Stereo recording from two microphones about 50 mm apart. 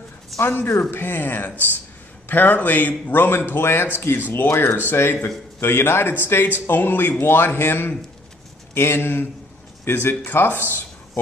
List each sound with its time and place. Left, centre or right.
0.4 s a man's voice: left